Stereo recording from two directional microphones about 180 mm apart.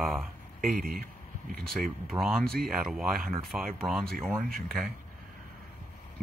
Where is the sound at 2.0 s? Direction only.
Centre (ahead or behind).